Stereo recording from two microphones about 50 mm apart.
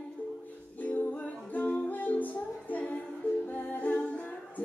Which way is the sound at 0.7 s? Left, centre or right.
Left.